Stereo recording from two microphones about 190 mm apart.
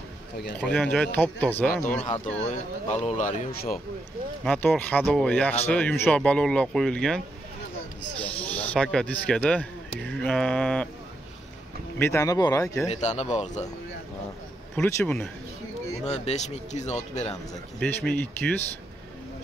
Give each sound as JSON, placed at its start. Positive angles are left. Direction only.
{"t": 0.6, "sound": "speech", "side_deg": 5}
{"t": 1.7, "sound": "speech", "side_deg": 45}
{"t": 4.5, "sound": "speech", "side_deg": 10}
{"t": 12.0, "sound": "speech", "side_deg": 15}
{"t": 12.8, "sound": "speech", "side_deg": 35}
{"t": 14.8, "sound": "speech", "side_deg": 5}
{"t": 16.0, "sound": "speech", "side_deg": 35}
{"t": 17.7, "sound": "speech", "side_deg": 5}